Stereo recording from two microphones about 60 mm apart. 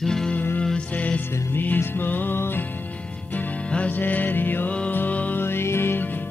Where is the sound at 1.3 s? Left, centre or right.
Left.